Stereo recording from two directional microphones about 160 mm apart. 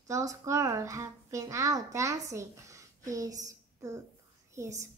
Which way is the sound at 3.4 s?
20° right (ahead or behind).